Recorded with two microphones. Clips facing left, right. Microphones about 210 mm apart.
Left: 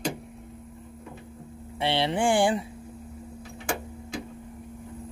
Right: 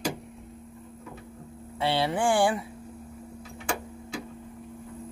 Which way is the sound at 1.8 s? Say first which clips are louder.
Left 1 dB; 15° left (ahead or behind).